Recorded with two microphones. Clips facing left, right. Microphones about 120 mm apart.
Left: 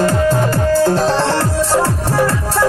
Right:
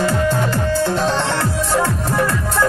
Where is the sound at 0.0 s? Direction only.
40° left (ahead or behind).